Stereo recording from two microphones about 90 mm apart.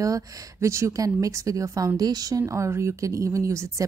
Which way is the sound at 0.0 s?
40° right (ahead or behind).